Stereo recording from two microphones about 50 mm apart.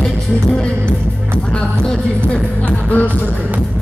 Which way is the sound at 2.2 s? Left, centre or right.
Left.